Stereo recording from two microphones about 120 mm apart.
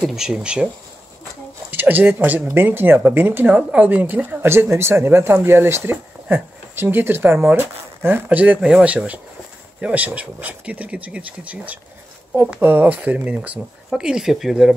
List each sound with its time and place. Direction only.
0.0 s speech: 5° right (ahead or behind)
1.7 s speech: 15° right (ahead or behind)